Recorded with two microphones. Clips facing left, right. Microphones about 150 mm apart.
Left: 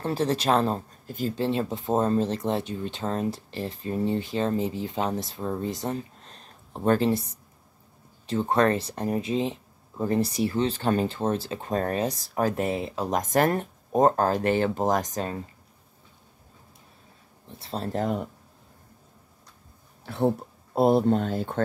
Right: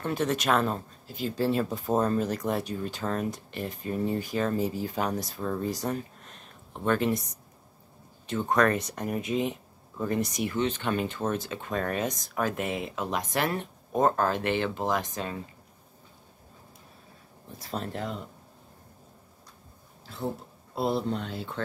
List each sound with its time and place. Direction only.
0.0 s speech: 30° left (ahead or behind)
1.0 s speech: 45° left (ahead or behind)
1.3 s speech: 25° left (ahead or behind); by 15.4 s 40° left (ahead or behind)
17.5 s speech: 25° left (ahead or behind); by 18.3 s 50° left (ahead or behind)
20.1 s speech: 60° left (ahead or behind)